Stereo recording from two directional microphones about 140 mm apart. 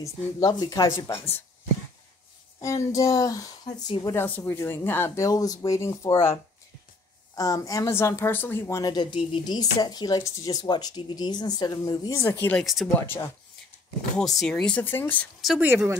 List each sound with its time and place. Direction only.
0.0 s a woman's voice: 30° left (ahead or behind)
2.6 s a woman's voice: 20° left (ahead or behind)
7.3 s a woman's voice: 25° left (ahead or behind)
12.5 s speech: centre (ahead or behind)
14.1 s speech: centre (ahead or behind)
15.6 s speech: 15° right (ahead or behind)